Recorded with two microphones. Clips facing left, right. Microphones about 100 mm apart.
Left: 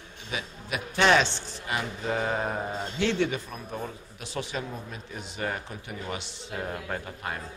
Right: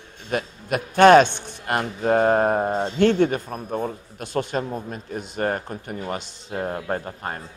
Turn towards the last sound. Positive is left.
turn(degrees=-40)  # may be behind; listen again after turning